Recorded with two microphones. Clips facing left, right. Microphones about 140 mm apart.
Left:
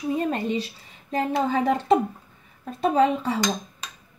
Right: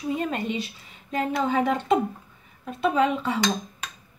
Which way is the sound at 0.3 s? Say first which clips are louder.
Left 3 dB; 35° left (ahead or behind).